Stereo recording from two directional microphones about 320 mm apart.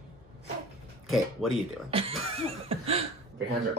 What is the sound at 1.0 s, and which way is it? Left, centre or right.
Speech, centre.